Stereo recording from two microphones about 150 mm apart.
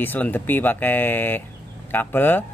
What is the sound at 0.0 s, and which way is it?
Speech, 10° left (ahead or behind).